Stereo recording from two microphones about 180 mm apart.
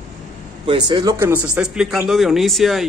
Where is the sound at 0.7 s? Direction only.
25° right (ahead or behind).